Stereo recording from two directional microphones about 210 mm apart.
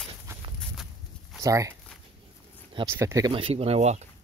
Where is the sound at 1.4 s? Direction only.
15° right (ahead or behind).